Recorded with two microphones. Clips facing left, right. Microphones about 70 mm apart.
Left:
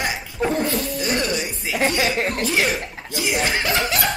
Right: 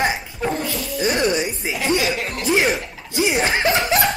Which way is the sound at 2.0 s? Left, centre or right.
Left.